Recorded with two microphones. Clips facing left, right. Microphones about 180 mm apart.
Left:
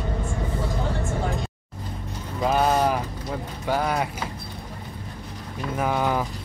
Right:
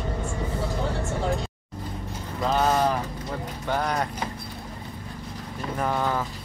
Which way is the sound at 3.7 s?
5° left (ahead or behind).